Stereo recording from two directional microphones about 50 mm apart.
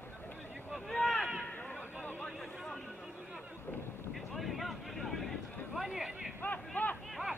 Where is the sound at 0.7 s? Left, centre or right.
Centre.